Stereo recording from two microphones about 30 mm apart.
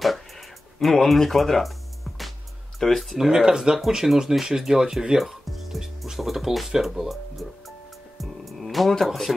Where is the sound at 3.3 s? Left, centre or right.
Right; by 6.4 s centre.